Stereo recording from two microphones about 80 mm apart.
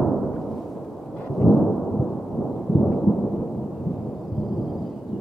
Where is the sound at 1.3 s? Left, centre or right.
Centre.